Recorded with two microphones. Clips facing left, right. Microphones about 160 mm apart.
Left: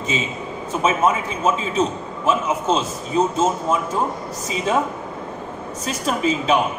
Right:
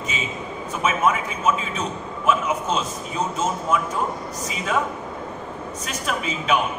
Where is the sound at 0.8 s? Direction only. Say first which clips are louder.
Left 2 dB; 30° left (ahead or behind).